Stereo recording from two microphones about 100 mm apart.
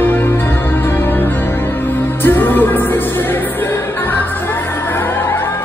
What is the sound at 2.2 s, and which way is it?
Music, 20° left (ahead or behind).